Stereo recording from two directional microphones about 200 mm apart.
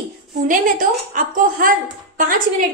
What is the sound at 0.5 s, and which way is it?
A woman's voice, 40° right (ahead or behind).